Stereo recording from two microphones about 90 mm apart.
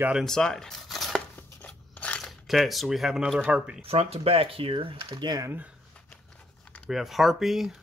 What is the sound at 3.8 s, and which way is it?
Speech, 90° right.